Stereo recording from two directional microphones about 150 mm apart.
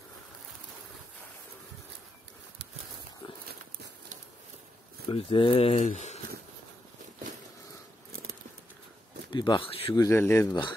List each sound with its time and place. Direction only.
5.1 s speech: 35° left (ahead or behind); by 6.1 s 50° left (ahead or behind)
9.3 s speech: 30° left (ahead or behind)
9.9 s speech: 15° left (ahead or behind)